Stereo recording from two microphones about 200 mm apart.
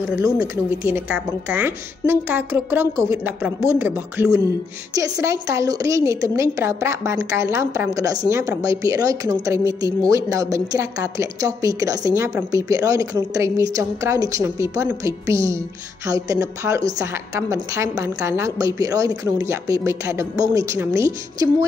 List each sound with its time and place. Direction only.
0.2 s a woman's voice: 15° right (ahead or behind)